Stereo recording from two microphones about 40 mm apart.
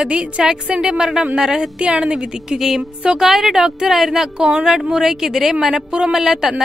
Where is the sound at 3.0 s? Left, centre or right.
Centre.